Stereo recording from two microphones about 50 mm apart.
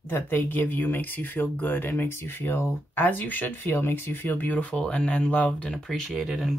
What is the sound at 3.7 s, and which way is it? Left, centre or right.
Speech, left.